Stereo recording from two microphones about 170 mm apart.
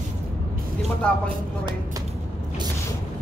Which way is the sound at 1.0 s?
5° left (ahead or behind).